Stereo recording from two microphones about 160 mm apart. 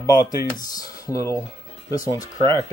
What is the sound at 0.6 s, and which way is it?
Speech, 25° left (ahead or behind).